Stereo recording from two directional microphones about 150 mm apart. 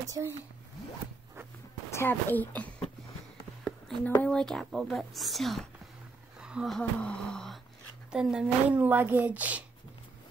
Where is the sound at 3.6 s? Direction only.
5° left (ahead or behind).